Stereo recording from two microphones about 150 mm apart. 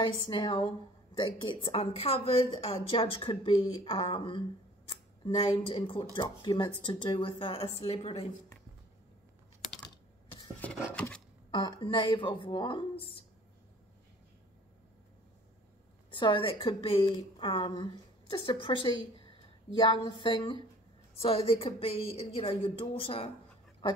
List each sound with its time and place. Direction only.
0.0 s a woman's voice: 30° left (ahead or behind)
10.9 s a sound: 10° left (ahead or behind)
11.5 s a woman's voice: 30° left (ahead or behind)
16.1 s a woman's voice: 35° left (ahead or behind)